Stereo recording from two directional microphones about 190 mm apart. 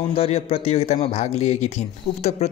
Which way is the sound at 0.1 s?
30° left (ahead or behind).